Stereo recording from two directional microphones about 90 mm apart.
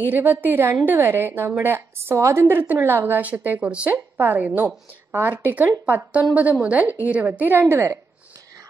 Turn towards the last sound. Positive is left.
turn(degrees=-30)  # may be behind; listen again after turning